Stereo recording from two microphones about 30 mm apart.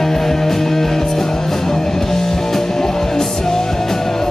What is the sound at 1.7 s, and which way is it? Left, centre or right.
Music, centre.